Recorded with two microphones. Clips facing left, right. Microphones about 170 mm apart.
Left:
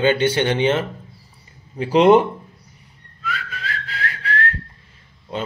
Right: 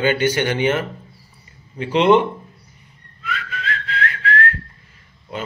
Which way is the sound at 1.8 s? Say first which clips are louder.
Left 2 dB; 40° left (ahead or behind).